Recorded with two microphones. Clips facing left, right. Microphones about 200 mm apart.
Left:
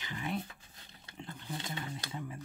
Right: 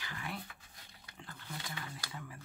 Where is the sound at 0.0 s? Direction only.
20° left (ahead or behind).